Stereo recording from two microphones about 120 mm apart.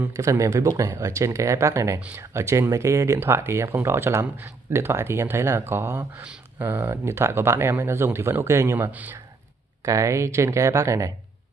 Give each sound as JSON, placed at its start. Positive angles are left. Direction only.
{"t": 0.0, "sound": "speech", "side_deg": -20}
{"t": 9.8, "sound": "speech", "side_deg": -25}